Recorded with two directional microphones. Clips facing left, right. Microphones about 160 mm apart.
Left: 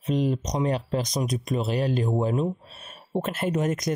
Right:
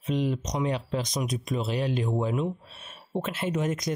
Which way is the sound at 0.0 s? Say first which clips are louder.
Left 3 dB; 40° left (ahead or behind).